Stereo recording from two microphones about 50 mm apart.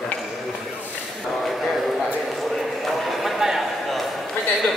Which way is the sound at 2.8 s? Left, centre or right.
Centre.